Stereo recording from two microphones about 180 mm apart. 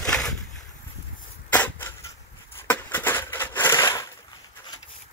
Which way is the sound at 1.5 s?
10° left (ahead or behind).